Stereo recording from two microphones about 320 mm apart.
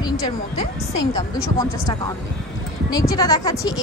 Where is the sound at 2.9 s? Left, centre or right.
Centre.